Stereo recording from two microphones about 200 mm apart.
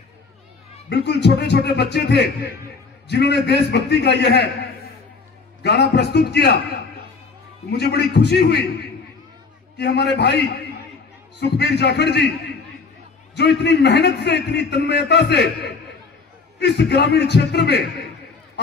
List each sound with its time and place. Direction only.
0.8 s a man's voice: 55° left (ahead or behind)
5.6 s a man's voice: 55° left (ahead or behind)
7.7 s a man's voice: 55° left (ahead or behind)
13.3 s a man's voice: 60° left (ahead or behind)